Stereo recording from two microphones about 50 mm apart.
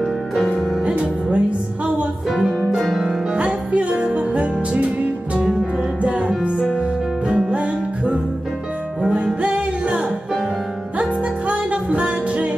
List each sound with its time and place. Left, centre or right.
0.4 s music: centre
0.8 s music: right
2.7 s music: centre
3.3 s music: right
6.0 s music: right
11.0 s music: right